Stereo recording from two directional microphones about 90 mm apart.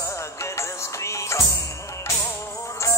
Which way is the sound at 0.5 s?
35° left (ahead or behind).